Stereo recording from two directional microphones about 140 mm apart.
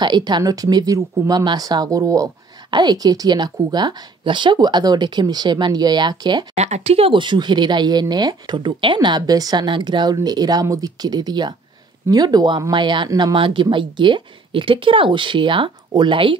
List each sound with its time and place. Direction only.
0.0 s speech: 30° right (ahead or behind)
6.5 s speech: 50° right (ahead or behind); by 16.3 s 35° right (ahead or behind)